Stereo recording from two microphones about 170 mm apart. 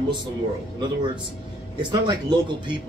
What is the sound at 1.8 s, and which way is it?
Speech, 25° right (ahead or behind).